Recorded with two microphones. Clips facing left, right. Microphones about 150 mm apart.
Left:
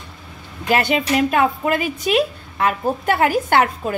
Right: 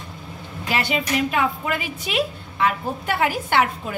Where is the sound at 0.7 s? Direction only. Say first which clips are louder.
Left 5 dB; 50° left (ahead or behind).